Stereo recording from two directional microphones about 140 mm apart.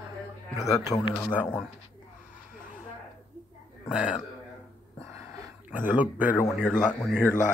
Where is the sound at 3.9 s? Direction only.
5° right (ahead or behind).